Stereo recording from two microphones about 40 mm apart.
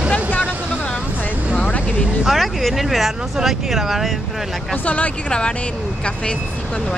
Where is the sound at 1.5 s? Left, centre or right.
Left.